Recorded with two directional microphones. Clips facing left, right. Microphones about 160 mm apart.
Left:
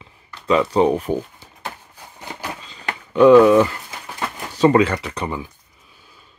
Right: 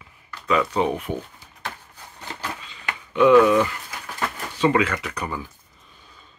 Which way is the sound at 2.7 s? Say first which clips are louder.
Left 4 dB; 35° left (ahead or behind).